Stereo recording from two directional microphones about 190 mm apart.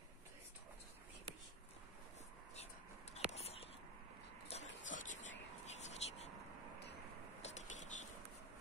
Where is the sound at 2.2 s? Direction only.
35° left (ahead or behind).